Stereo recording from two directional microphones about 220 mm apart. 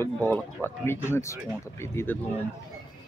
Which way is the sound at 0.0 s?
10° left (ahead or behind).